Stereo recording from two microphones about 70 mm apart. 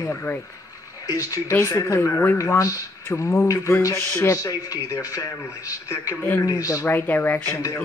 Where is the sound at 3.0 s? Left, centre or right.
Left.